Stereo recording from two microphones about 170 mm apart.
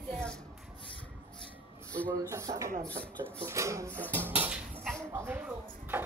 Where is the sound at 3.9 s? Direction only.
10° left (ahead or behind).